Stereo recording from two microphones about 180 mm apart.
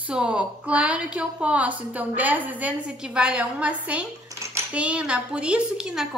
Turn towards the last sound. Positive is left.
turn(degrees=-5)  # may be behind; listen again after turning